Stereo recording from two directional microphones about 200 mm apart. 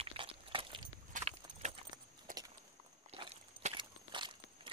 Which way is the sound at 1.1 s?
35° right (ahead or behind).